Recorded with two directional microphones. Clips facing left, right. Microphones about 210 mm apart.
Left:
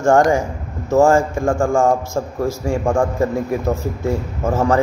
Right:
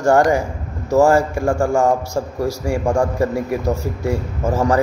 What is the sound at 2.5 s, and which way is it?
A man's voice, 10° right (ahead or behind).